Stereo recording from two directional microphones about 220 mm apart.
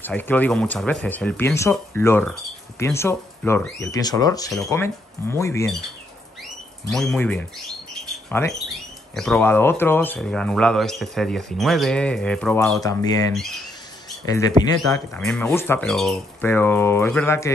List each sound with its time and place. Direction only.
0.0 s speech: 10° left (ahead or behind)
6.9 s speech: centre (ahead or behind)
12.7 s speech: 15° left (ahead or behind)
14.2 s speech: 15° left (ahead or behind)
14.9 s speech: 5° left (ahead or behind)